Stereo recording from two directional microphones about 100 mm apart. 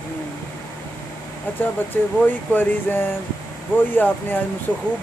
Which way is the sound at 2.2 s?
20° left (ahead or behind).